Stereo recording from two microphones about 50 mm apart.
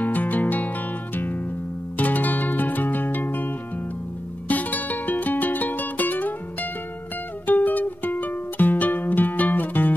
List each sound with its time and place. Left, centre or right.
0.0 s music: left